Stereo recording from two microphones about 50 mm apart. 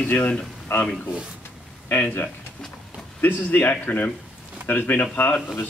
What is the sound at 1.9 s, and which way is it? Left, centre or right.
A man's voice, left.